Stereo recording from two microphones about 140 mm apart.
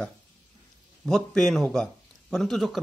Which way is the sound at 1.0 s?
Centre (ahead or behind).